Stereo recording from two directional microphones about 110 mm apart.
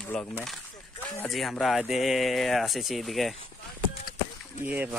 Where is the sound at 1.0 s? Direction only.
15° left (ahead or behind).